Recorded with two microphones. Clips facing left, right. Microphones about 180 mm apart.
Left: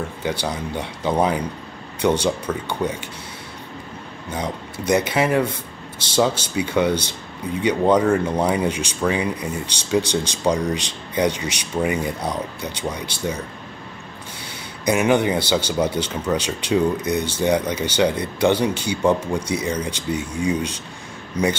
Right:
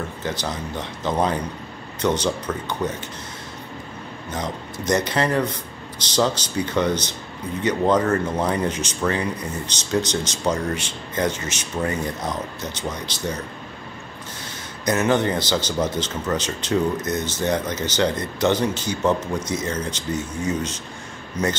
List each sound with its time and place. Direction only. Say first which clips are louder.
0.5 s speech: left 2 dB; 10° left (ahead or behind)
4.8 s speech: left 2 dB; 10° left (ahead or behind)
5.9 s speech: left 2 dB; 25° left (ahead or behind)
6.5 s speech: left 2 dB; 10° left (ahead or behind)
14.9 s speech: left 2 dB; 10° left (ahead or behind)